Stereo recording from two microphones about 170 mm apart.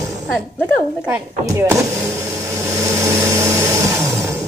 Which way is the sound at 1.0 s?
10° right (ahead or behind).